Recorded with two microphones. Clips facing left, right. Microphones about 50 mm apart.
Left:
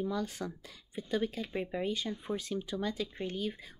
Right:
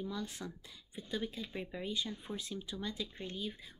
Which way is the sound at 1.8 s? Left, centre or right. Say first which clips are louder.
Left 5 dB; left.